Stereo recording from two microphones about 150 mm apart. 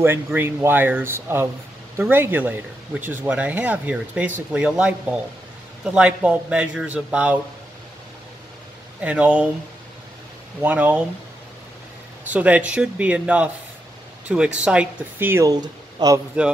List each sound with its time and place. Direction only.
0.0 s speech: 15° right (ahead or behind)
9.0 s speech: 10° right (ahead or behind)
10.6 s speech: 10° right (ahead or behind)
12.3 s speech: 10° right (ahead or behind)
15.5 s speech: 25° right (ahead or behind)